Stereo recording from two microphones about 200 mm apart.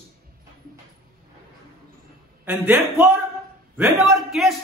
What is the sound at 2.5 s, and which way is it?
A man's voice, 10° right (ahead or behind).